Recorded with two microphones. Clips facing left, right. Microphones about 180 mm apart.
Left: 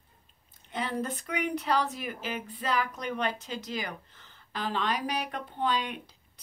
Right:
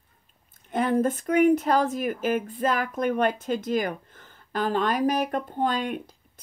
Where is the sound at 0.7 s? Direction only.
50° right (ahead or behind).